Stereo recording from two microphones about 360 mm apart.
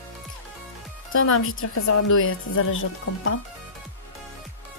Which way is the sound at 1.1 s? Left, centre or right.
Left.